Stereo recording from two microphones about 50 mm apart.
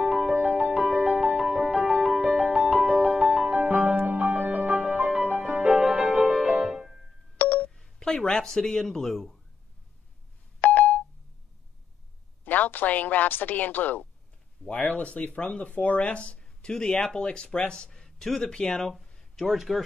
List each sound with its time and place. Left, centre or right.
0.3 s music: right
3.4 s music: right; by 7.1 s centre
7.3 s telephone dialing: left
7.7 s speech: centre
10.6 s telephone dialing: left
12.4 s speech: left; by 18.8 s centre
19.0 s a sound: centre
19.4 s speech: centre